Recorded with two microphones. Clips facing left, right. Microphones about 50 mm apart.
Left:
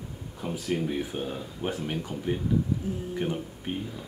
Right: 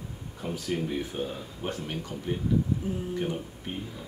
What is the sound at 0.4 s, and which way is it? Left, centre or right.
Speech, centre.